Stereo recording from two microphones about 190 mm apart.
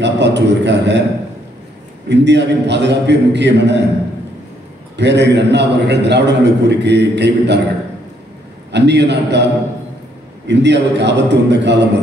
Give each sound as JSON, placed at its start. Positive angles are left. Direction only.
{"t": 0.0, "sound": "a man's voice", "side_deg": -65}
{"t": 2.0, "sound": "a man's voice", "side_deg": -65}
{"t": 4.9, "sound": "a man's voice", "side_deg": -65}
{"t": 8.7, "sound": "a man's voice", "side_deg": -65}